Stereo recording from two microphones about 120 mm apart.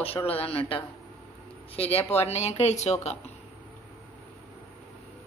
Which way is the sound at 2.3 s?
65° left (ahead or behind).